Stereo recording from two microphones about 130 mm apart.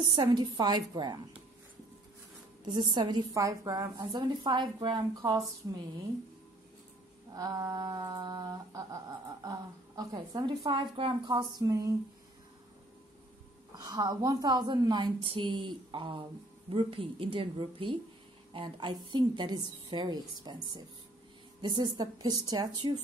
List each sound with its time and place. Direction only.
0.0 s a woman's voice: 40° right (ahead or behind)
2.6 s a woman's voice: 35° right (ahead or behind)
7.3 s humming: 30° right (ahead or behind)
13.7 s a woman's voice: 30° right (ahead or behind)